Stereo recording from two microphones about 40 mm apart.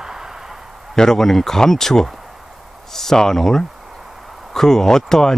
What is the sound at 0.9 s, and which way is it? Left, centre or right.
Speech, centre.